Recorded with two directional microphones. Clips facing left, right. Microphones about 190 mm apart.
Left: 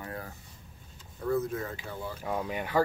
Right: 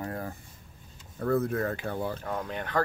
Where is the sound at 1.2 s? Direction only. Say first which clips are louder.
Right 3 dB; 60° right (ahead or behind).